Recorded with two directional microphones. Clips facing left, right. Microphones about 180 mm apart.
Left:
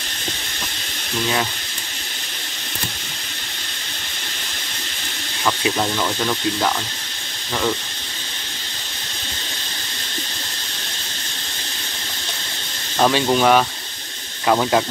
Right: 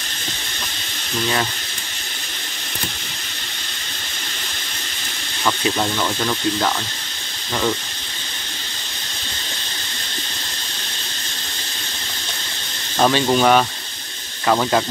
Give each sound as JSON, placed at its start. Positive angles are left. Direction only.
{"t": 5.4, "sound": "speech", "side_deg": 5}
{"t": 13.0, "sound": "speech", "side_deg": 0}